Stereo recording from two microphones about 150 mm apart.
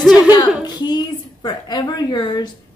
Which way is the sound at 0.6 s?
30° left (ahead or behind).